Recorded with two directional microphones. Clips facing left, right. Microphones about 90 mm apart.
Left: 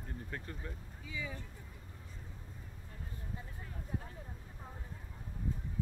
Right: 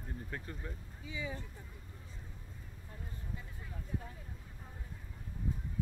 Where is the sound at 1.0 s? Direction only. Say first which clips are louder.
Right 2 dB; 25° right (ahead or behind).